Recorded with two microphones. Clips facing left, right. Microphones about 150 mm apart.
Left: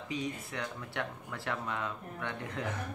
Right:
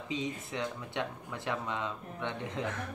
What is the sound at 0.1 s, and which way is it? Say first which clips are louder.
Speech: right 1 dB; 20° right (ahead or behind).